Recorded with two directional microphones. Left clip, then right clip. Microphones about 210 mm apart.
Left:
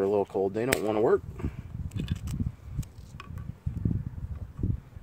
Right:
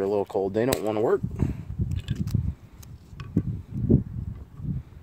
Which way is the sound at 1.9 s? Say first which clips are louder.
Left 1 dB; 5° left (ahead or behind).